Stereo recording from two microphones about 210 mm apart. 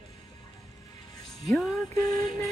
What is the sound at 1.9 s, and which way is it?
Female singing, 15° left (ahead or behind).